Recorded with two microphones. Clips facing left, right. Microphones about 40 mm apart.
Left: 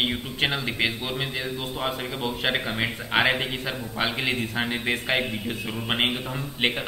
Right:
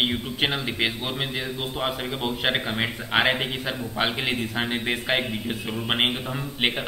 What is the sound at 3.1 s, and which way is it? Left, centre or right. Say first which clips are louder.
A man's voice: even; centre.